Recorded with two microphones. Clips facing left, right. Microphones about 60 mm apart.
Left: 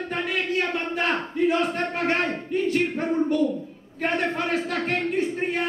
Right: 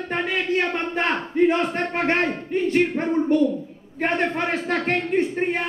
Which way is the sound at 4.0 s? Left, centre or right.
Right.